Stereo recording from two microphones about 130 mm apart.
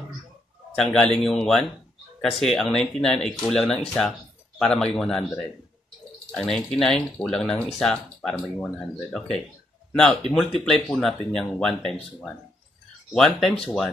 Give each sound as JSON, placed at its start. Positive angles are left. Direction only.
{"t": 0.7, "sound": "speech", "side_deg": 5}